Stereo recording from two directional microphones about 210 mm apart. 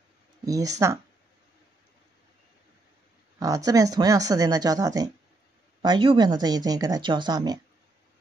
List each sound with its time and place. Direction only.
0.5 s speech: 15° right (ahead or behind)
3.3 s speech: 15° right (ahead or behind)